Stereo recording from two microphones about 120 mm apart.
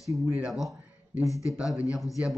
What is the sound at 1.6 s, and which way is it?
Speech, 10° right (ahead or behind).